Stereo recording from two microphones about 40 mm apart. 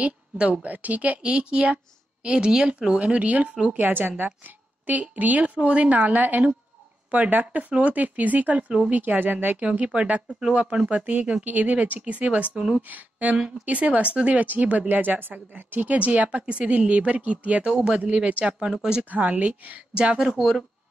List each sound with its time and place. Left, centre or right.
0.4 s a woman's voice: right
3.7 s a woman's voice: right
4.8 s a woman's voice: right
5.6 s speech: right
8.9 s a woman's voice: right
9.6 s a woman's voice: right
19.0 s speech: right
19.9 s a woman's voice: right
20.2 s speech: centre